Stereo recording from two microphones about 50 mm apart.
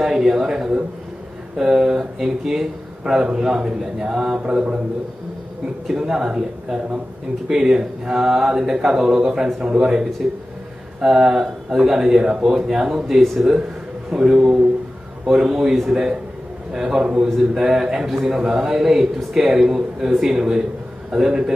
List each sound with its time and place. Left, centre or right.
0.0 s a man's voice: centre
5.9 s a man's voice: centre
13.2 s a man's voice: centre
14.1 s a man's voice: centre